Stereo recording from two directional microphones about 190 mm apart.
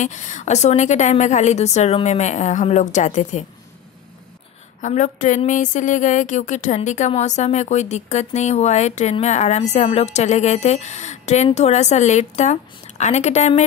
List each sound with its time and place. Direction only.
0.0 s speech: 40° left (ahead or behind)
4.8 s speech: 40° left (ahead or behind)